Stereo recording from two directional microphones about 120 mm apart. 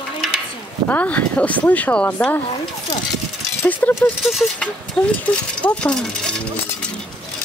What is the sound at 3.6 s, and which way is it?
Speech, 15° left (ahead or behind).